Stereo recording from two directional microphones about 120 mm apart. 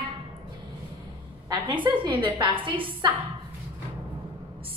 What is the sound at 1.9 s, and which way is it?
A woman's voice, 45° right (ahead or behind).